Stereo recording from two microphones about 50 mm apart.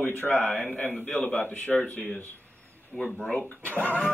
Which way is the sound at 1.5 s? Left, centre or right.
Left.